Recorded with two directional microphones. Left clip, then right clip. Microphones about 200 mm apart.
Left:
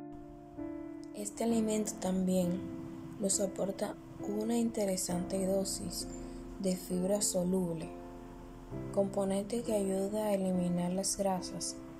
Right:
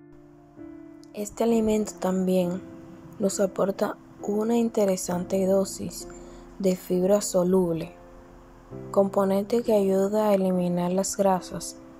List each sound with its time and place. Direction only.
1.1 s a woman's voice: 10° right (ahead or behind)
8.9 s a woman's voice: 15° right (ahead or behind)